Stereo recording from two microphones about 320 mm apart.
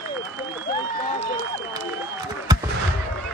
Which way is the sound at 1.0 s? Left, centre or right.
Centre.